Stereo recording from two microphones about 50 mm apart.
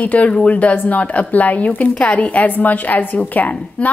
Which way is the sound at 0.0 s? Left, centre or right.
Left.